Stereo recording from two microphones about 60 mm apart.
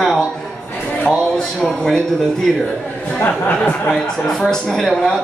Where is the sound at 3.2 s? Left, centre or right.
Left.